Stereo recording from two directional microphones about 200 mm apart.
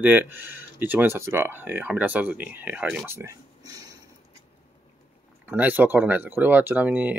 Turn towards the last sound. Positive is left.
turn(degrees=-10)  # may be behind; listen again after turning